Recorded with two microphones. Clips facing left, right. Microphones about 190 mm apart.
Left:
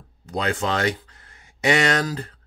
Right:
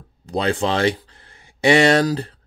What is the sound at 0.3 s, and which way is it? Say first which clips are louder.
Speech: right 4 dB; 30° right (ahead or behind).